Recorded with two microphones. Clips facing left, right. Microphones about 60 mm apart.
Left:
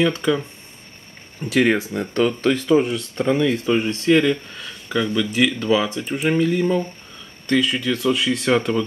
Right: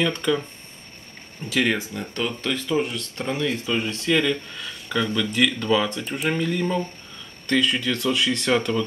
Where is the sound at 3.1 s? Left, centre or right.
Left.